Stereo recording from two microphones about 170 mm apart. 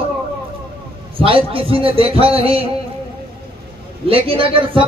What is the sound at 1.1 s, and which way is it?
A man's voice, 35° right (ahead or behind).